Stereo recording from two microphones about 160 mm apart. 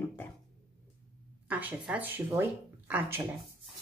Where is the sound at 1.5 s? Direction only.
10° right (ahead or behind).